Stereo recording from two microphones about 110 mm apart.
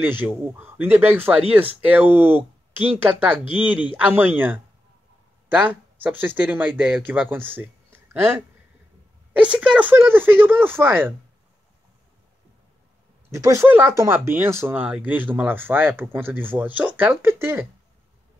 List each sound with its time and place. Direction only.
0.0 s speech: 15° right (ahead or behind)
5.5 s speech: 15° right (ahead or behind)
9.4 s speech: 10° right (ahead or behind)
13.3 s speech: 30° right (ahead or behind)